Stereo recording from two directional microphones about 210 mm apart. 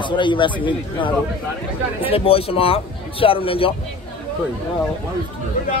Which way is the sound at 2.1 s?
25° left (ahead or behind).